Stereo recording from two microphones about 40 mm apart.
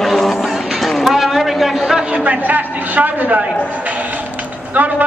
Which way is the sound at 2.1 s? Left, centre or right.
Right.